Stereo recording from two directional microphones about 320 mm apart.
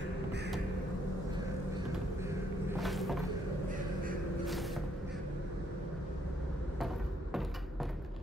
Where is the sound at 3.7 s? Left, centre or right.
Right.